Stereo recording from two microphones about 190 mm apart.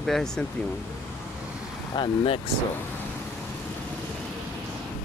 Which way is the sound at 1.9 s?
30° left (ahead or behind).